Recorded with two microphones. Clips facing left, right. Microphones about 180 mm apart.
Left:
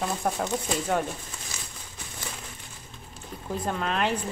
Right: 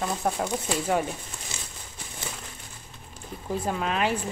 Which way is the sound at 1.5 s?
25° right (ahead or behind).